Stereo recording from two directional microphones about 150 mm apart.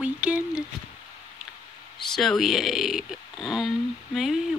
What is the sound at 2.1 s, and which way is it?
Speech, centre (ahead or behind).